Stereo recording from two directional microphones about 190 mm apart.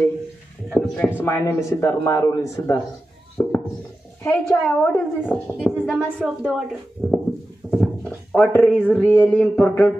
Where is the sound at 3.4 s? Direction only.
15° left (ahead or behind).